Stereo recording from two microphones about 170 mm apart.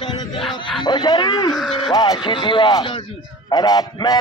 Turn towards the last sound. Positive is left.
turn(degrees=25)  # may be behind; listen again after turning